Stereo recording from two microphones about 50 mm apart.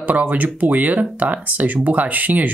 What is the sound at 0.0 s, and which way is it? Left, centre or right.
Speech, right.